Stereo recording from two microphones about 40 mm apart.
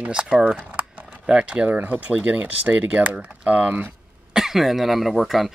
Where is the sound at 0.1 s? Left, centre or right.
Right.